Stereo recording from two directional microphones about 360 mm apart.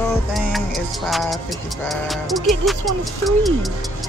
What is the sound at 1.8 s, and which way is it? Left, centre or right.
Speech, centre.